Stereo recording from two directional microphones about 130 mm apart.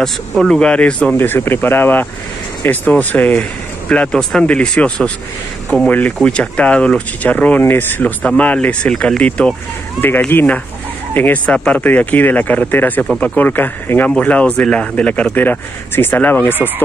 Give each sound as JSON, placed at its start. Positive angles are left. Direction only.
{"t": 0.0, "sound": "speech", "side_deg": 5}